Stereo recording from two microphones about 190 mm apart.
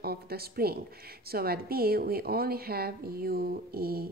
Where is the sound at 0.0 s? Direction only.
55° right (ahead or behind).